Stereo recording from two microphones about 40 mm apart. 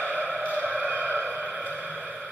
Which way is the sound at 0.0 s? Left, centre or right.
Right.